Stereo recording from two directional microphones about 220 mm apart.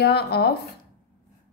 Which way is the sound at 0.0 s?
45° left (ahead or behind).